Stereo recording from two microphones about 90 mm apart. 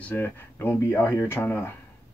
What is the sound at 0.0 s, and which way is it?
Speech, 20° left (ahead or behind).